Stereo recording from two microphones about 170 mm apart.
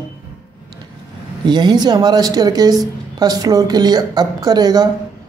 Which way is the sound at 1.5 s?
25° right (ahead or behind).